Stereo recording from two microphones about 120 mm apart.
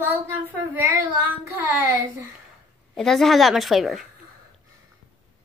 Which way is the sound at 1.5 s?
20° right (ahead or behind).